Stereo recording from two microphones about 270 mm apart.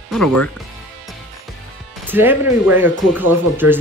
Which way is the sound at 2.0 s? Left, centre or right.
Centre.